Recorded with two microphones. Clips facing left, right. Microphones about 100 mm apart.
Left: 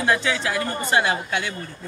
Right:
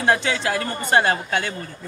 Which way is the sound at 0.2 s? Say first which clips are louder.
Right 1 dB; 55° right (ahead or behind).